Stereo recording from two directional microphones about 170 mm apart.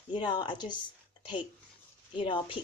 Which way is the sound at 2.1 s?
30° left (ahead or behind).